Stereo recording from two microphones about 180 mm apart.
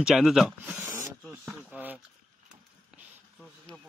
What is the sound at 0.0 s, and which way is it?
Speech, centre (ahead or behind).